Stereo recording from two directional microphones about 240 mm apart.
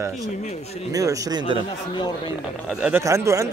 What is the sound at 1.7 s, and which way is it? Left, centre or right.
Speech, centre.